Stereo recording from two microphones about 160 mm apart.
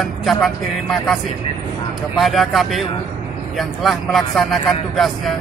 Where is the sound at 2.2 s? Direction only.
Centre (ahead or behind).